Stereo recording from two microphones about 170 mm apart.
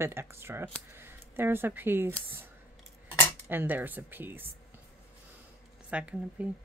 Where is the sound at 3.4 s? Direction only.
10° right (ahead or behind).